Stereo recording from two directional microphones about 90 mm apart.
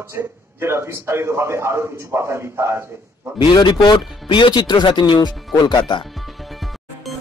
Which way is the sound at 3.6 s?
60° left (ahead or behind).